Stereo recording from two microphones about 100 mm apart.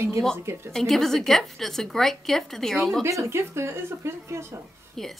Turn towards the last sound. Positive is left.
turn(degrees=5)  # may be behind; listen again after turning